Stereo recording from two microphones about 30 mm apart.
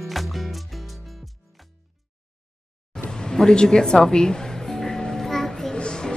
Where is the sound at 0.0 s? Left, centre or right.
Centre.